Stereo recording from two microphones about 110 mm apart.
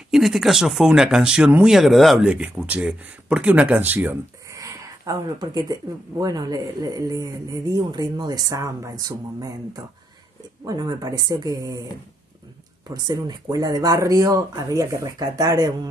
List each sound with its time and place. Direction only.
0.1 s speech: 5° right (ahead or behind)
4.5 s speech: 30° right (ahead or behind)
12.9 s speech: 35° right (ahead or behind)